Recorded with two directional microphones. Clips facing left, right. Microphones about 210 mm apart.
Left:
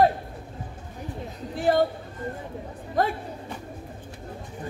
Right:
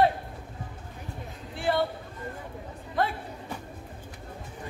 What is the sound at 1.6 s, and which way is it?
Chatter, 40° left (ahead or behind).